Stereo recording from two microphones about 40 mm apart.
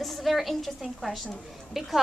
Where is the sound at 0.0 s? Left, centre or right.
Centre.